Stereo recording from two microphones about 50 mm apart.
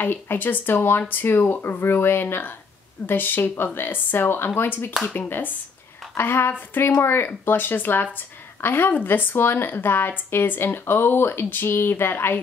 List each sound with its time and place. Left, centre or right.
0.0 s speech: left
5.0 s speech: left
6.1 s speech: left
10.6 s speech: left